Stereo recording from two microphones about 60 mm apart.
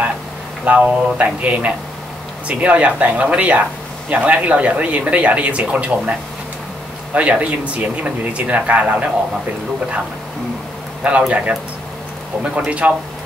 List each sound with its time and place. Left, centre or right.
0.7 s speech: right
7.2 s speech: right
11.1 s speech: right
12.5 s speech: right